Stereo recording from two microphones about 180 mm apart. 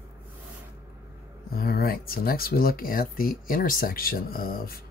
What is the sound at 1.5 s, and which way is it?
Speech, 55° left (ahead or behind).